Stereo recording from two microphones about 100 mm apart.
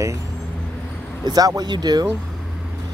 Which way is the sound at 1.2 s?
40° right (ahead or behind).